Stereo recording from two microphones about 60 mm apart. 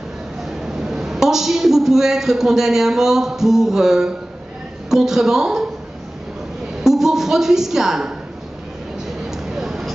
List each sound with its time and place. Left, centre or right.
0.5 s a woman's voice: centre
6.8 s a woman's voice: centre
9.3 s a sound: centre